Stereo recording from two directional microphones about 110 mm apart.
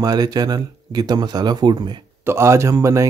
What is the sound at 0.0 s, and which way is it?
Speech, 35° right (ahead or behind).